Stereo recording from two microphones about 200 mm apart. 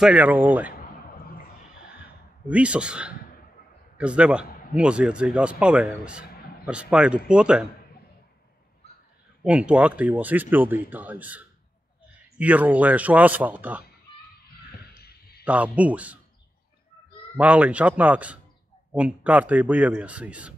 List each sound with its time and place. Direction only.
0.0 s speech: 5° right (ahead or behind)
2.4 s a man's voice: 5° right (ahead or behind)
9.4 s speech: 5° right (ahead or behind)
15.4 s speech: 5° right (ahead or behind)
17.4 s speech: 5° right (ahead or behind)